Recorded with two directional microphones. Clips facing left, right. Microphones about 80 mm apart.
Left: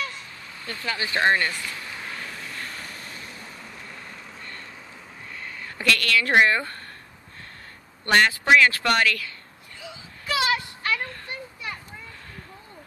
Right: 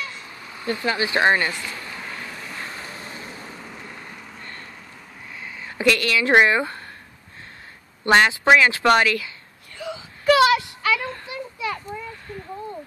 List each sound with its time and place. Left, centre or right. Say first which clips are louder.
0.6 s speech: right 7 dB; centre
1.8 s vehicle: right 1 dB; centre
2.6 s vehicle: right 3 dB; centre
5.4 s speech: right 8 dB; centre
8.0 s speech: right 3 dB; centre
9.8 s a sound: right 9 dB; right